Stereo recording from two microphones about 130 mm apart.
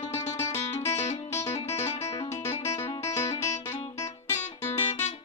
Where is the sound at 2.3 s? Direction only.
20° left (ahead or behind).